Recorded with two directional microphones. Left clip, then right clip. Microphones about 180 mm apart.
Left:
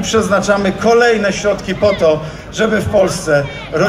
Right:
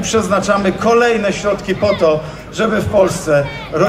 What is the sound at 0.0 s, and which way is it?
A man's voice, 5° left (ahead or behind).